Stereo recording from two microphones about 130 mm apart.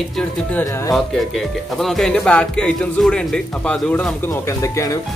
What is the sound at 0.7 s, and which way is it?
Speech, 25° left (ahead or behind).